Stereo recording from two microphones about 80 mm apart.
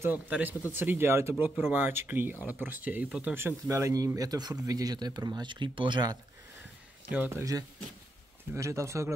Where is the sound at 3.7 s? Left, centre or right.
Right.